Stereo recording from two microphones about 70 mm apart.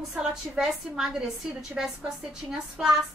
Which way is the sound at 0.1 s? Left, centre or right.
Centre.